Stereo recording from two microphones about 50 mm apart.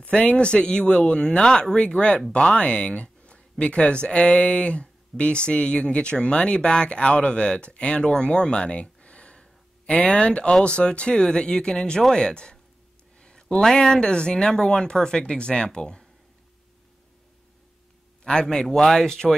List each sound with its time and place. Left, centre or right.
0.1 s speech: left
18.2 s speech: centre